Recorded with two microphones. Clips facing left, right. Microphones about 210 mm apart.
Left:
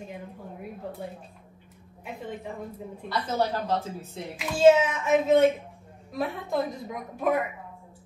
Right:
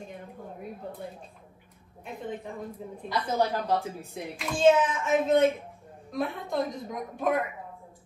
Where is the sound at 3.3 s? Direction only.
15° right (ahead or behind).